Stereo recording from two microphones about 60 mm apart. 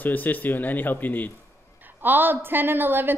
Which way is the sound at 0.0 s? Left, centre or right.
Left.